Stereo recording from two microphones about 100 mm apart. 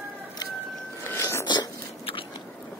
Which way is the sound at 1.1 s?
25° left (ahead or behind).